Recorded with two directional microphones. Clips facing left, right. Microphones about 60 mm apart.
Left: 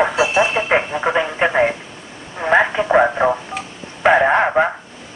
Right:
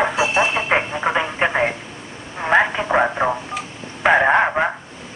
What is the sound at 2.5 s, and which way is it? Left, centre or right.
Radio, centre.